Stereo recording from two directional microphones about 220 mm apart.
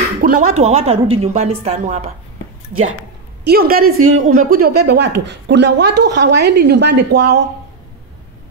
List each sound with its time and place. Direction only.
0.2 s a sound: 40° right (ahead or behind)
0.6 s a woman's voice: 30° right (ahead or behind)
3.4 s a woman's voice: 45° right (ahead or behind)